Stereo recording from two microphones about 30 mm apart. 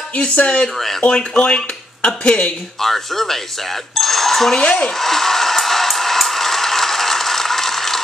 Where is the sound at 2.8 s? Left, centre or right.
Centre.